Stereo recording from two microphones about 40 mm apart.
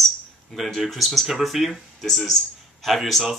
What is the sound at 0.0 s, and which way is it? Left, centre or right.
Speech, centre.